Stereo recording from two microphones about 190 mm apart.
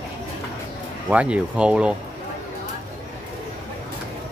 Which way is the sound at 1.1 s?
5° right (ahead or behind).